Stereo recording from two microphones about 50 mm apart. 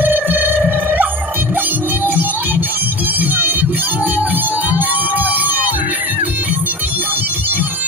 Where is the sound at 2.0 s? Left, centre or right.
Right.